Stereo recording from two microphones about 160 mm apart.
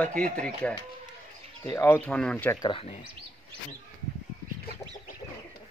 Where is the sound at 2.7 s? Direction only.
35° left (ahead or behind).